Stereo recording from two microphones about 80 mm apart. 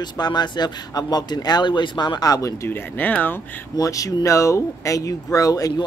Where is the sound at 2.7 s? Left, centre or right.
Left.